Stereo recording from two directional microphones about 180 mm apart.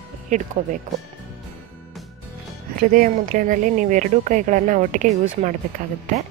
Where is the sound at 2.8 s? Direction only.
50° right (ahead or behind).